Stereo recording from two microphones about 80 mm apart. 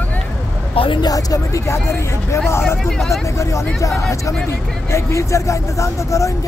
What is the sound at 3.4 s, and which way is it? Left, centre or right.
Speech, left.